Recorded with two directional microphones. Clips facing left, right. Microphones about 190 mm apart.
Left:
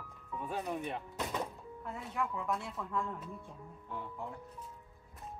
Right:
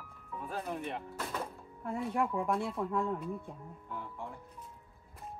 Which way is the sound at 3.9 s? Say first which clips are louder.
Even; centre (ahead or behind).